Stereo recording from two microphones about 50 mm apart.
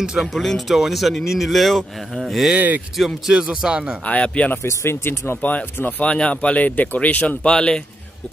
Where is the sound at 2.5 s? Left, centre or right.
Right.